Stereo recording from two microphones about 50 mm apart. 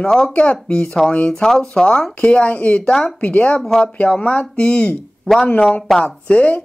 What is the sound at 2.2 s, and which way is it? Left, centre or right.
Speech, left.